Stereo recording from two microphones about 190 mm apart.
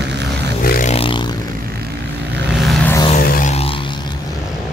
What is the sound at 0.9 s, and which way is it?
Vehicle, 30° left (ahead or behind).